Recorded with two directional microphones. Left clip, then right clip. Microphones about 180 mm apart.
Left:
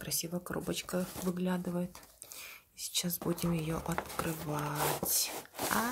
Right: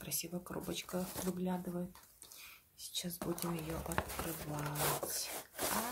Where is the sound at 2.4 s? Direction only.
40° left (ahead or behind).